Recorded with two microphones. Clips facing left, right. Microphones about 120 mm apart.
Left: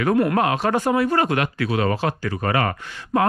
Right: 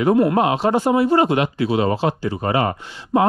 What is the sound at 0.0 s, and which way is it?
Speech, 20° right (ahead or behind).